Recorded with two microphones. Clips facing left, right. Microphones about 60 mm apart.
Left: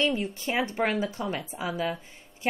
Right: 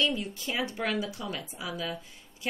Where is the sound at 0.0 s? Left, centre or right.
Left.